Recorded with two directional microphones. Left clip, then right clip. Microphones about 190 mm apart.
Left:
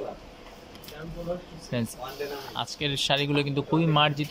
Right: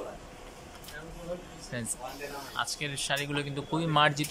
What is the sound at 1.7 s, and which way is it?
A man's voice, 15° left (ahead or behind).